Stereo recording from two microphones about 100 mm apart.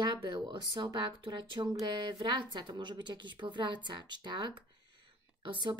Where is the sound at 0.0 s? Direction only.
50° right (ahead or behind).